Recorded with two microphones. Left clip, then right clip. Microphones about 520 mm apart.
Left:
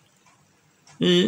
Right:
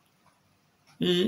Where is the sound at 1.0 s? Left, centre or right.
Right.